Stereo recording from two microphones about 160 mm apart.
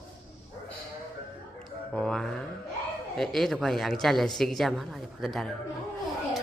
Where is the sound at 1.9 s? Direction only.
5° left (ahead or behind).